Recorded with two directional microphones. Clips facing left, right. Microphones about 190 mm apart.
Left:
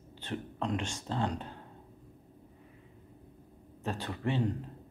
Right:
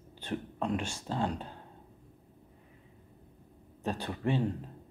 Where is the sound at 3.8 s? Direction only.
15° right (ahead or behind).